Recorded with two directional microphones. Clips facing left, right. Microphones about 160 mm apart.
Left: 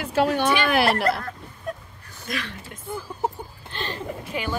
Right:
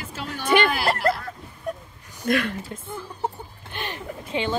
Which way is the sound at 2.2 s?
55° right (ahead or behind).